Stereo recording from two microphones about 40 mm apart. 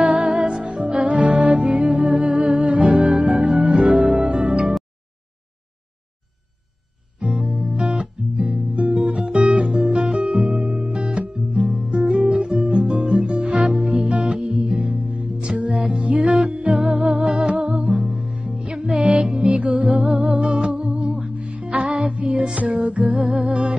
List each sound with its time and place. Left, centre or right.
0.0 s music: right
2.0 s music: right
7.2 s music: right